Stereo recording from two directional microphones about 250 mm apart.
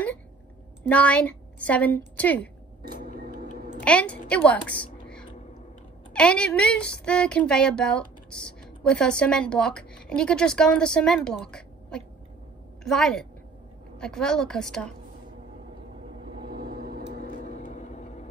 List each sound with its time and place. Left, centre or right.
0.8 s a woman's voice: centre
2.8 s a sound: right
3.8 s a woman's voice: centre
16.4 s vehicle: right
17.6 s vehicle: left